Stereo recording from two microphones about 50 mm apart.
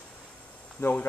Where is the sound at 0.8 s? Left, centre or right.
Left.